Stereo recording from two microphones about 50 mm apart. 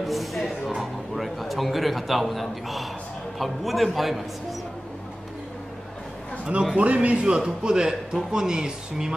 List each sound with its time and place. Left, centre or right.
0.0 s music: centre
3.3 s a man's voice: centre
6.8 s a man's voice: right